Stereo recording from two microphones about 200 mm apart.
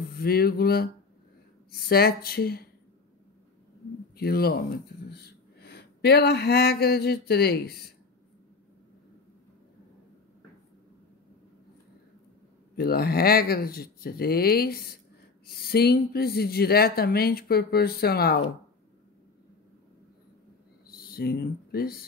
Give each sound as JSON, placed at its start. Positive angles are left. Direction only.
{"t": 0.1, "sound": "speech", "side_deg": 50}
{"t": 4.2, "sound": "speech", "side_deg": 50}
{"t": 5.1, "sound": "a sound", "side_deg": 55}
{"t": 12.7, "sound": "speech", "side_deg": 50}
{"t": 20.9, "sound": "speech", "side_deg": 50}